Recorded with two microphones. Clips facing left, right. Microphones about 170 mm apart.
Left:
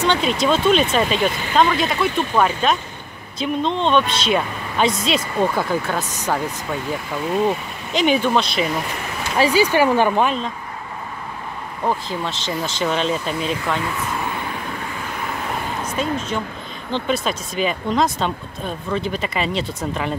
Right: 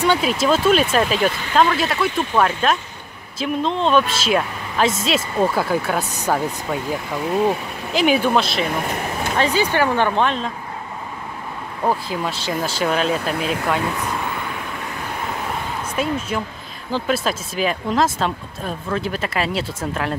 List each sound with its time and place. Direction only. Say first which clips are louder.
0.0 s speech: right 1 dB; 5° right (ahead or behind)
9.4 s speech: left 3 dB; 10° left (ahead or behind)
11.9 s speech: right 1 dB; 10° right (ahead or behind)
13.3 s speech: right 1 dB; 60° right (ahead or behind)
15.8 s speech: right 1 dB; 10° right (ahead or behind)